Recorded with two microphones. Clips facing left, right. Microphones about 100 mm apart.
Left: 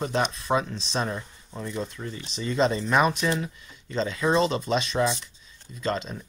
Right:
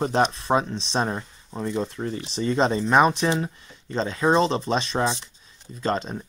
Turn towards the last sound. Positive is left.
turn(degrees=-40)  # may be behind; listen again after turning